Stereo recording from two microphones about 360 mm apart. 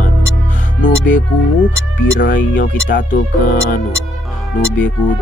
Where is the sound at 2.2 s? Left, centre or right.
Left.